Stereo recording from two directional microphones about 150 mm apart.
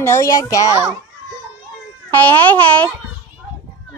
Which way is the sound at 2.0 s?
10° left (ahead or behind).